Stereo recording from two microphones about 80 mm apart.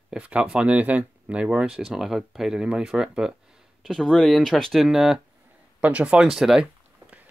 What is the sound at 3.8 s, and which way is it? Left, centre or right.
Speech, centre.